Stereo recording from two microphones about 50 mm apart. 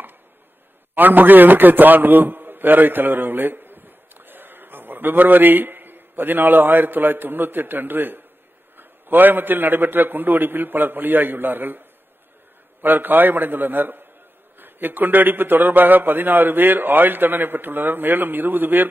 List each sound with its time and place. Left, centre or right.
0.9 s a man's voice: right
12.8 s a man's voice: right